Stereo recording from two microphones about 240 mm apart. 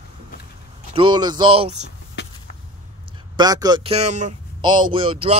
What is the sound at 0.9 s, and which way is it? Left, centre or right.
Speech, centre.